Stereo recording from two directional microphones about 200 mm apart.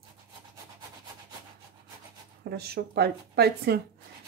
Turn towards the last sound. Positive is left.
turn(degrees=-55)  # may be behind; listen again after turning